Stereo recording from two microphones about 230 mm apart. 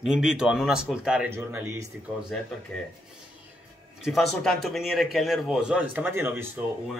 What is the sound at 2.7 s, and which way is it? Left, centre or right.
Speech, centre.